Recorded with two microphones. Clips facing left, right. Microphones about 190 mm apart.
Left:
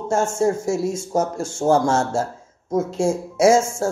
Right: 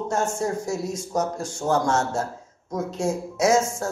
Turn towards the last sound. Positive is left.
turn(degrees=30)  # may be behind; listen again after turning